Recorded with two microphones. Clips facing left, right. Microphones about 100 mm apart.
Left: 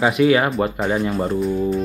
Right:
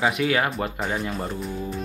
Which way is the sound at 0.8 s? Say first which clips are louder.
Left 7 dB; 30° left (ahead or behind).